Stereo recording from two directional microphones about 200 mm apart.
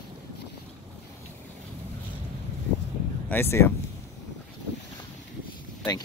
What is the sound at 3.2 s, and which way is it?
Speech, 10° left (ahead or behind).